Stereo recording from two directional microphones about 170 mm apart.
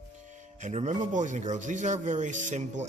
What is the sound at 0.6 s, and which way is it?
Speech, 45° right (ahead or behind).